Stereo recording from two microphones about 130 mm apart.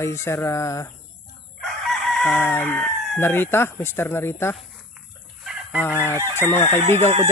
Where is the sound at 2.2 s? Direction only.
15° left (ahead or behind).